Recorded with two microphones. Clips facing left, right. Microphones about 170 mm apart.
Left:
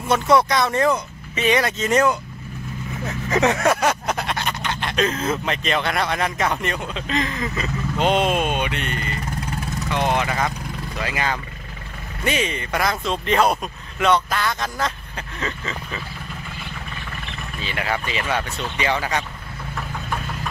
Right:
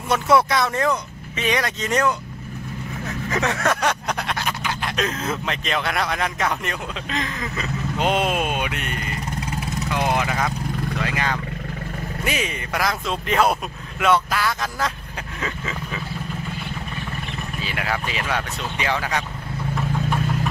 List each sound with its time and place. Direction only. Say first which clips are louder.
0.1 s speech: left 1 dB; 5° right (ahead or behind)
3.3 s speech: left 5 dB; 20° left (ahead or behind)
3.8 s speech: left 2 dB; 5° left (ahead or behind)
15.4 s a sound: even; 5° right (ahead or behind)
17.6 s speech: left 1 dB; 5° right (ahead or behind)